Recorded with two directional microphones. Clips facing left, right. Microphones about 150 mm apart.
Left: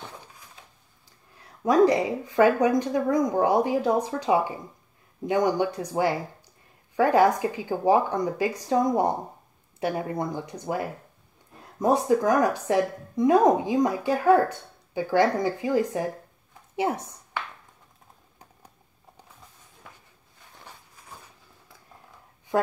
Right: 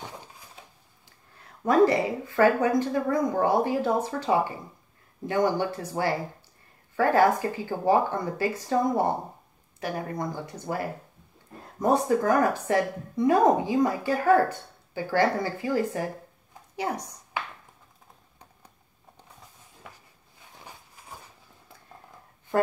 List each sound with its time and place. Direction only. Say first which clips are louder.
1.6 s speech: left 1 dB; 15° left (ahead or behind)